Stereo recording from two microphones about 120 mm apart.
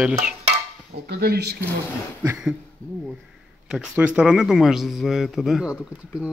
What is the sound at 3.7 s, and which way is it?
A man's voice, 10° right (ahead or behind).